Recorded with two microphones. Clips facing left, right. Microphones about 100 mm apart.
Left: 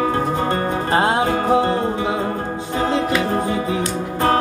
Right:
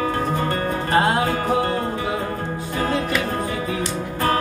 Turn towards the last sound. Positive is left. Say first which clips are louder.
# left 4 dB
turn(degrees=30)  # may be behind; listen again after turning